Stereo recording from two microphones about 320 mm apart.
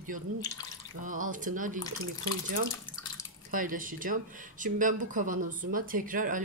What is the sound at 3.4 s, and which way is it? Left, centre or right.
Speech, right.